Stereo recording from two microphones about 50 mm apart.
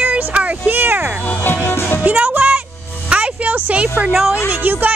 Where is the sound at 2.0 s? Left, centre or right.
Right.